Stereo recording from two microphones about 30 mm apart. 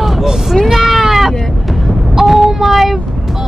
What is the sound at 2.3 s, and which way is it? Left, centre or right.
Child singing, centre.